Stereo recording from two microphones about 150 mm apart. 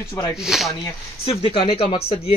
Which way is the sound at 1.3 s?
40° left (ahead or behind).